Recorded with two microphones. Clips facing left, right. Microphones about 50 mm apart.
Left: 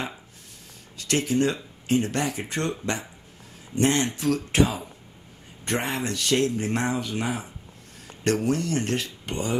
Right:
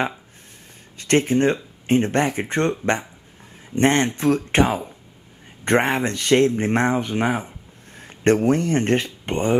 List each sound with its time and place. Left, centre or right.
0.9 s speech: right
3.7 s speech: right